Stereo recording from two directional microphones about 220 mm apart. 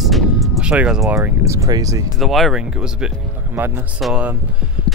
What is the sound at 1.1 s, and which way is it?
Speech, 15° right (ahead or behind).